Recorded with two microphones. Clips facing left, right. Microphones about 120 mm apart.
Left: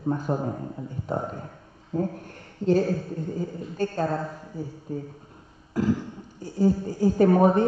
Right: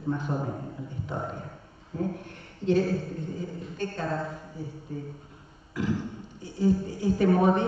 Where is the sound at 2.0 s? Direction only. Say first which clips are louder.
Left 3 dB; 40° left (ahead or behind).